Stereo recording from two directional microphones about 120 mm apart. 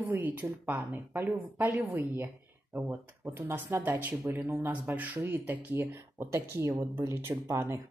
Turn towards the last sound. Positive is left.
turn(degrees=-20)  # may be behind; listen again after turning